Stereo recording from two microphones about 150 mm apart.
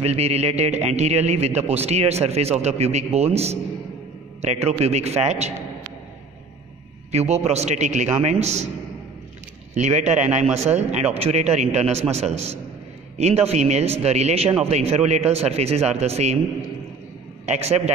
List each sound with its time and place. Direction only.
0.0 s speech: 45° right (ahead or behind)
7.1 s speech: 45° right (ahead or behind)
9.8 s speech: 50° right (ahead or behind)
17.5 s speech: 45° right (ahead or behind)